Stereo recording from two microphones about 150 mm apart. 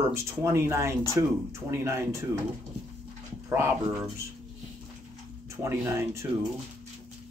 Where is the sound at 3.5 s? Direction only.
15° right (ahead or behind).